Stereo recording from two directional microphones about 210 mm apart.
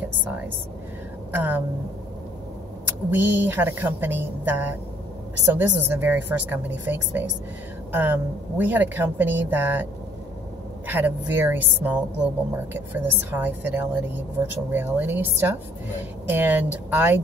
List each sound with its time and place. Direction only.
1.3 s a woman's voice: 10° right (ahead or behind)
3.1 s a woman's voice: 10° right (ahead or behind)
10.9 s a woman's voice: 10° right (ahead or behind)